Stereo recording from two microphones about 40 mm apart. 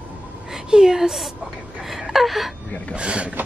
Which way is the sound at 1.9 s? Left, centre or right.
Centre.